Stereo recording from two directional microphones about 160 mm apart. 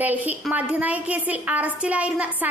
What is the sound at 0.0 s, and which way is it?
A woman's voice, 10° right (ahead or behind).